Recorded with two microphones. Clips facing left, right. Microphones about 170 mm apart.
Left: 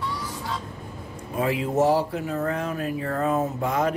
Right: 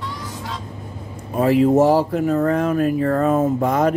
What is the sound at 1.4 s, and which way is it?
Speech, 40° right (ahead or behind).